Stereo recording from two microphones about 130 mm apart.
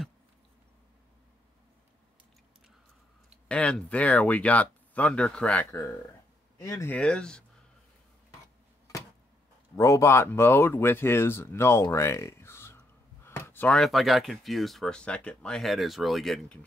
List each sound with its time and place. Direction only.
3.4 s speech: 10° left (ahead or behind)
6.6 s speech: 25° left (ahead or behind)
6.9 s speech: 10° left (ahead or behind)
9.8 s speech: 25° left (ahead or behind)
13.7 s speech: centre (ahead or behind)